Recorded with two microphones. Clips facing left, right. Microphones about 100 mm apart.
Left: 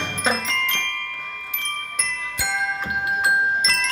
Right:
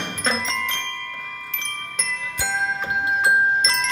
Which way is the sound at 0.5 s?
30° right (ahead or behind).